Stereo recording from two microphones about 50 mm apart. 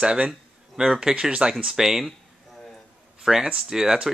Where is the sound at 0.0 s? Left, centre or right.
Centre.